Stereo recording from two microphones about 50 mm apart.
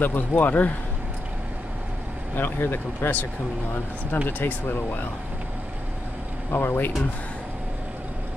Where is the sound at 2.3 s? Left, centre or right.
Left.